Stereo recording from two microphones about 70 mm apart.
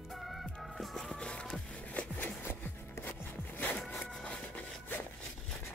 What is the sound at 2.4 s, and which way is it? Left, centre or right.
Zipper, left.